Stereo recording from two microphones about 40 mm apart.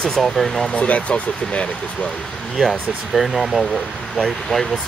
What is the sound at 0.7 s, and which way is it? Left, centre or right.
Speech, left.